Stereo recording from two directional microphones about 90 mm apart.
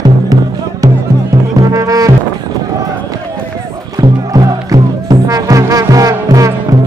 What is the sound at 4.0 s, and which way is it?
Music, 50° right (ahead or behind).